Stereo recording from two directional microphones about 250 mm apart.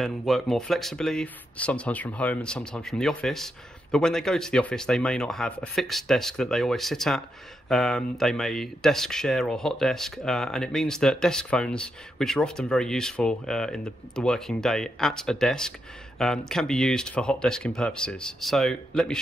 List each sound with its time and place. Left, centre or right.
0.0 s speech: centre